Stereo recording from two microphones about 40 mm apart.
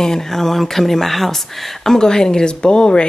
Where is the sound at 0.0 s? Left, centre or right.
Centre.